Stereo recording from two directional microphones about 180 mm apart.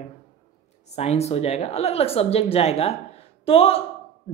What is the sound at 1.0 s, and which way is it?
Speech, 35° left (ahead or behind).